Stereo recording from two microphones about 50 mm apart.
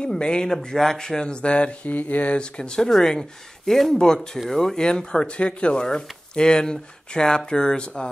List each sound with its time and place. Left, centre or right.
0.0 s speech: centre